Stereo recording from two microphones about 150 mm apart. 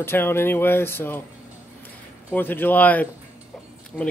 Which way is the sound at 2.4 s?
15° left (ahead or behind).